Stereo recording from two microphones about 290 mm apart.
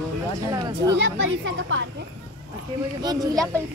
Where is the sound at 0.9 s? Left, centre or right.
Right.